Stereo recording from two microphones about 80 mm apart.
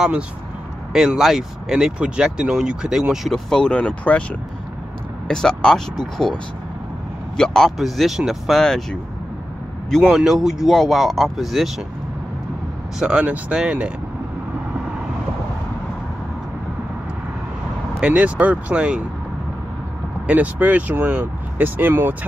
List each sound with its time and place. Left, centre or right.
0.9 s speech: centre
3.4 s speech: centre
5.3 s speech: centre
7.3 s speech: centre
10.0 s speech: centre
13.0 s speech: centre
18.0 s speech: centre
20.2 s speech: centre